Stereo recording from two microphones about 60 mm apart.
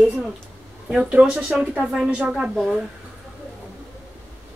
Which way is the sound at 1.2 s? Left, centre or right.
Centre.